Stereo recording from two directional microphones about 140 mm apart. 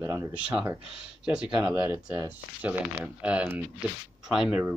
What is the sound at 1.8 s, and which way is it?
Speech, 15° right (ahead or behind).